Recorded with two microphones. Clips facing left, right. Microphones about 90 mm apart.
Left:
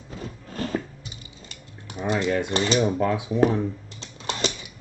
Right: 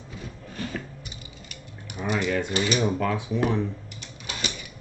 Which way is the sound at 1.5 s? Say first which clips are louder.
Left 3 dB; 25° left (ahead or behind).